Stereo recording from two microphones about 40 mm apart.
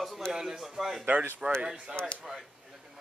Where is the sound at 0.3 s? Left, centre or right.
Centre.